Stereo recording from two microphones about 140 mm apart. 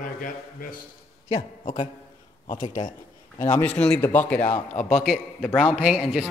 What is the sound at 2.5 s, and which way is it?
Speech, 70° left (ahead or behind).